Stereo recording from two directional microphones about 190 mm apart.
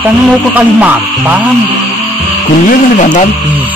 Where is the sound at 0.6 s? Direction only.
10° right (ahead or behind).